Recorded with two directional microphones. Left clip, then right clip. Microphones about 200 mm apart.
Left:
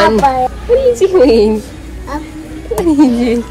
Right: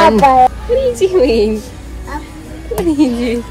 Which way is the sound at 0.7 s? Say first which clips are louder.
Left 5 dB; 25° left (ahead or behind).